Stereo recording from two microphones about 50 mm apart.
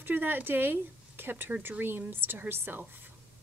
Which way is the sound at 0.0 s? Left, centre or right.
Right.